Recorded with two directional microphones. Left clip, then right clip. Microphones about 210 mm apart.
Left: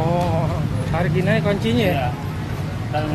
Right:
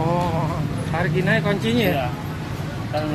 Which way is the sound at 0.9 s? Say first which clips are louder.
Even; 10° right (ahead or behind).